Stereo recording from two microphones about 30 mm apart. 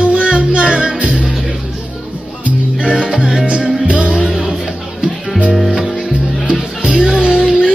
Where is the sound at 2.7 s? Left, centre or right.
Right.